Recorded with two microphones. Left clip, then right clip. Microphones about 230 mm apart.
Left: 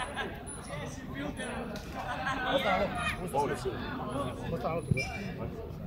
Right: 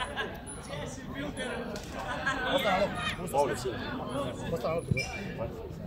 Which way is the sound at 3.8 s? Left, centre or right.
Right.